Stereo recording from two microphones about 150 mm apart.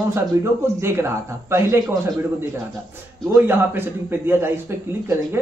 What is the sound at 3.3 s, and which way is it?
A man's voice, 15° right (ahead or behind).